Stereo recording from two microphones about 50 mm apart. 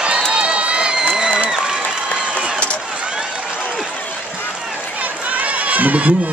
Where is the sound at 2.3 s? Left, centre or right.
Right.